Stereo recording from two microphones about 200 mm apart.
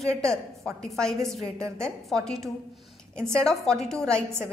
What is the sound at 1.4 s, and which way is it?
Speech, 15° right (ahead or behind).